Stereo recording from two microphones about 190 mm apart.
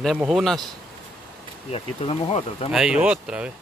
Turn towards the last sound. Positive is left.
turn(degrees=-5)  # may be behind; listen again after turning